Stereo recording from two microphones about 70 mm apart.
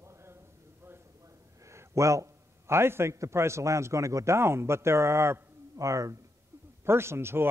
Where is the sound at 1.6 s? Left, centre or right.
Right.